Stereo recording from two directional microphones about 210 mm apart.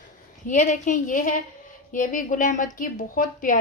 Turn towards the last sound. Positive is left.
turn(degrees=40)  # may be behind; listen again after turning